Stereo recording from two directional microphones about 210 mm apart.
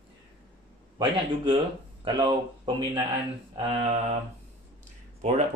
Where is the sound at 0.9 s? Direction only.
25° right (ahead or behind).